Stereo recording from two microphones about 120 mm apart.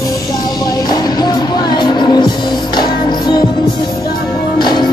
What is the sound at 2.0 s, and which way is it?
Music, 40° left (ahead or behind).